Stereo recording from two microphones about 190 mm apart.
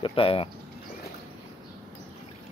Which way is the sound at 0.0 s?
30° left (ahead or behind).